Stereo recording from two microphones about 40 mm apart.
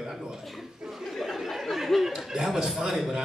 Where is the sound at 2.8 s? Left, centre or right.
Centre.